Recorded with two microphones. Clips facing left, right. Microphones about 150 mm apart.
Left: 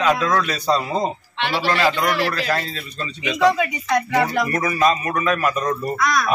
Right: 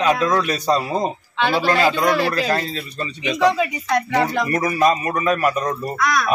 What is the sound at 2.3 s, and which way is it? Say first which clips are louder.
Speech: right 2 dB; 20° right (ahead or behind).